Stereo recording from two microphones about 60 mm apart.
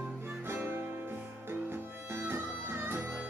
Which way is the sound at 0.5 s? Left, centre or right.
Right.